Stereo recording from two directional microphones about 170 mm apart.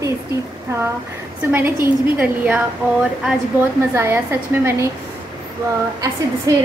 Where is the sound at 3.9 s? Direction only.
15° right (ahead or behind).